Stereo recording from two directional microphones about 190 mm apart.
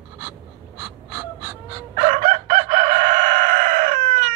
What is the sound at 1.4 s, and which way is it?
Fowl, 5° right (ahead or behind).